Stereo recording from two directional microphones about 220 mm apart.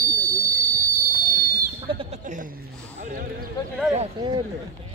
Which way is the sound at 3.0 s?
40° right (ahead or behind).